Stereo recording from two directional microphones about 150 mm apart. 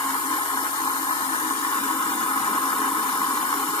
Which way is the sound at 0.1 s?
35° left (ahead or behind).